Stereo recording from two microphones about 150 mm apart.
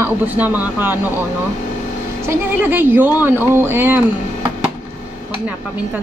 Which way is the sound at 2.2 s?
15° right (ahead or behind).